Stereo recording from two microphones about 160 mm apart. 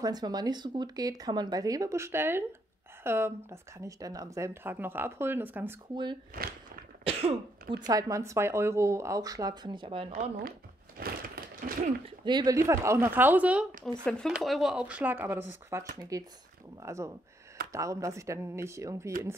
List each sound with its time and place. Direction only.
0.0 s speech: 25° right (ahead or behind)
6.4 s speech: 60° right (ahead or behind)
7.1 s cough: 40° right (ahead or behind)
7.7 s speech: 25° right (ahead or behind)
11.0 s a sound: 65° right (ahead or behind)
12.3 s speech: 25° right (ahead or behind); by 13.7 s 10° right (ahead or behind)
14.0 s speech: 5° left (ahead or behind); by 19.1 s 20° right (ahead or behind)